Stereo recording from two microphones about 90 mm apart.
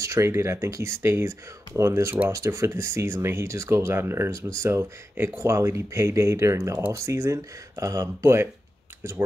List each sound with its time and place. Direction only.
0.0 s speech: 30° right (ahead or behind)